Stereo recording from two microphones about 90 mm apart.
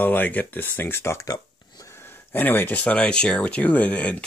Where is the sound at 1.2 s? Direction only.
40° left (ahead or behind).